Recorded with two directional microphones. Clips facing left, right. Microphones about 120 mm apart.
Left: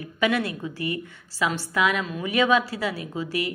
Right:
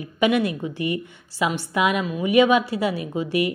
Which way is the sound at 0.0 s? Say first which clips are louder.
Right 4 dB; 20° right (ahead or behind).